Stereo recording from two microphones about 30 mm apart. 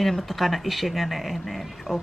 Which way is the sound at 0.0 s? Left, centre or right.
Centre.